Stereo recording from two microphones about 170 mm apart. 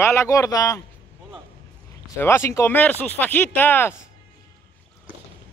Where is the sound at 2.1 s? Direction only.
15° left (ahead or behind).